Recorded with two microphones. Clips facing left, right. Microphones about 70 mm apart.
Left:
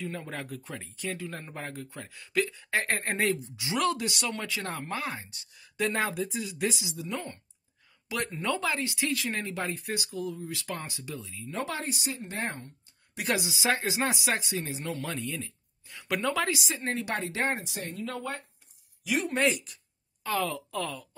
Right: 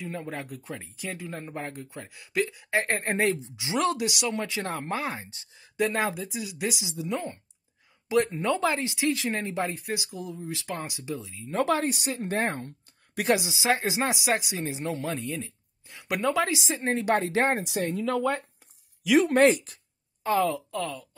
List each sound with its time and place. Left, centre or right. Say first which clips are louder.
0.0 s speech: right 2 dB; centre
4.5 s speech: right 3 dB; right
5.9 s speech: left 2 dB; centre
6.8 s speech: right 4 dB; right
11.5 s speech: right 8 dB; right
13.2 s speech: right 4 dB; right
17.6 s speech: right 9 dB; right
19.3 s speech: right 7 dB; right
20.2 s speech: right 6 dB; right
20.5 s speech: right 2 dB; centre